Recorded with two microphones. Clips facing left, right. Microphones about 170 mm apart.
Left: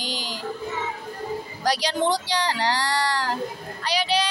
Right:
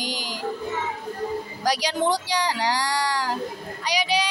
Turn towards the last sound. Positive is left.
turn(degrees=-15)  # may be behind; listen again after turning